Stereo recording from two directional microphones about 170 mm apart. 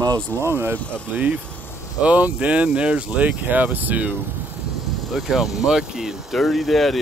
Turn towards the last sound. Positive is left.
turn(degrees=0)  # may be behind; listen again after turning